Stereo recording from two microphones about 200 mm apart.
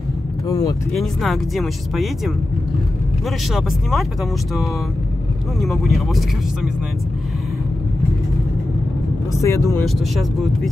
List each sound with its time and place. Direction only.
0.5 s speech: 15° left (ahead or behind)
0.9 s speech: centre (ahead or behind)
9.3 s speech: 15° left (ahead or behind)
9.8 s speech: centre (ahead or behind)